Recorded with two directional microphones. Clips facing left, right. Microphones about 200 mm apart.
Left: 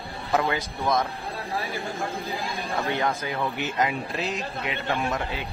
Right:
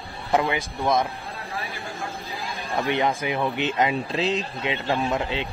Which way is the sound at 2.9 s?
15° right (ahead or behind).